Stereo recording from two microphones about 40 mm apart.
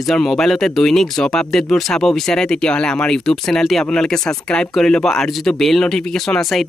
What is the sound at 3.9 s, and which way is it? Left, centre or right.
Speech, centre.